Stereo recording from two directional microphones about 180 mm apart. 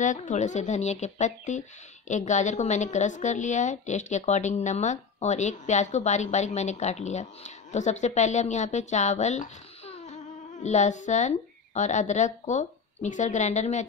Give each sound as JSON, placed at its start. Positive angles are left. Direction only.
{"t": 0.0, "sound": "a woman's voice", "side_deg": 45}